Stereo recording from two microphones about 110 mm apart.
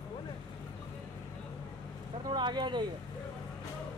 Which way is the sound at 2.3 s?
45° right (ahead or behind).